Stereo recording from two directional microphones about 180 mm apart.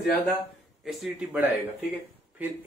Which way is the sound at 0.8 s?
Centre (ahead or behind).